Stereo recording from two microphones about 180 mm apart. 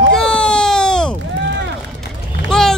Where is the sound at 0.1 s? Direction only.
5° left (ahead or behind).